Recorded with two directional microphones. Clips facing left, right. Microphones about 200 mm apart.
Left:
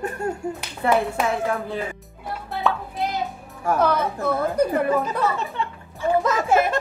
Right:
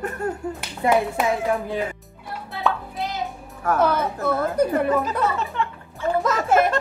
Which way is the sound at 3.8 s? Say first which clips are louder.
Even; 5° right (ahead or behind).